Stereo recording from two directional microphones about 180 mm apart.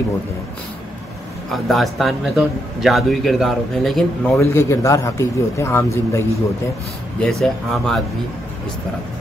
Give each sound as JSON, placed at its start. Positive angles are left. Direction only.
{"t": 1.5, "sound": "a man's voice", "side_deg": 0}
{"t": 4.4, "sound": "a man's voice", "side_deg": 15}
{"t": 7.2, "sound": "a man's voice", "side_deg": 5}